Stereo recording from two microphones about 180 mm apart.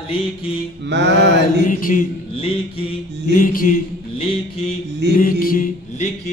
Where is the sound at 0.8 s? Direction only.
75° right (ahead or behind).